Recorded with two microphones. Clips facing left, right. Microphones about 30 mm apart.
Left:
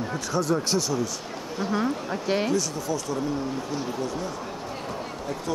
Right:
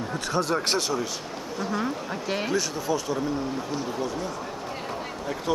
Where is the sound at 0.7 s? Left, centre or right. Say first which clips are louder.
Left 1 dB; right.